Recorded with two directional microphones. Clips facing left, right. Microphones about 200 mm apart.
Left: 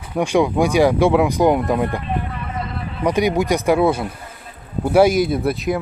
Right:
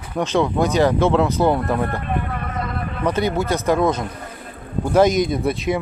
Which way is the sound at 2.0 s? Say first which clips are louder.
Even; 55° right (ahead or behind).